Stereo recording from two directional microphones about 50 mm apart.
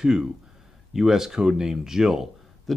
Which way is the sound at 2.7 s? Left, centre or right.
Centre.